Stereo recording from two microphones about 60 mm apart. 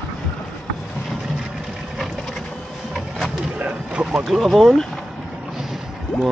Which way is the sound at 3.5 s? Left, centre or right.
Centre.